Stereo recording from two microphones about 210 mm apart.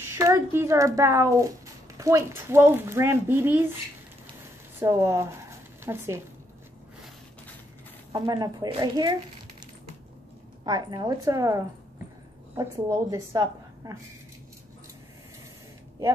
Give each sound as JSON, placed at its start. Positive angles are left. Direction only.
{"t": 0.0, "sound": "speech", "side_deg": -15}
{"t": 4.7, "sound": "speech", "side_deg": -15}
{"t": 8.1, "sound": "speech", "side_deg": -15}
{"t": 10.6, "sound": "a woman's voice", "side_deg": -20}